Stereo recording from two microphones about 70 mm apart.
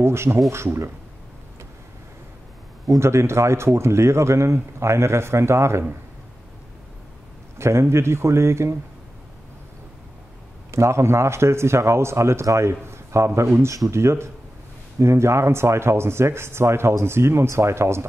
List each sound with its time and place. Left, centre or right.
0.0 s speech: right
3.0 s speech: right
7.5 s speech: right
10.7 s speech: right